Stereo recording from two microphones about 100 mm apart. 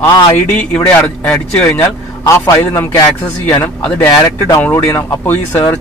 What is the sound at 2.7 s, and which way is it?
Speech, 30° left (ahead or behind).